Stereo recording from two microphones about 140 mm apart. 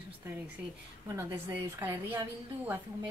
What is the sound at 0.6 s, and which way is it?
A woman's voice, 10° right (ahead or behind).